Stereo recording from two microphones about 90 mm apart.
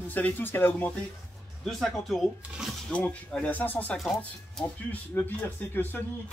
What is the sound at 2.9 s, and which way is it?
Speech, 15° left (ahead or behind).